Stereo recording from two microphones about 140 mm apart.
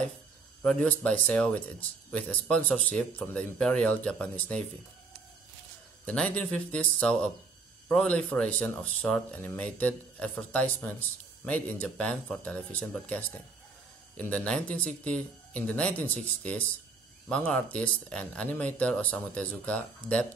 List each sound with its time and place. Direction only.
0.7 s speech: 5° left (ahead or behind)
6.0 s speech: 10° left (ahead or behind)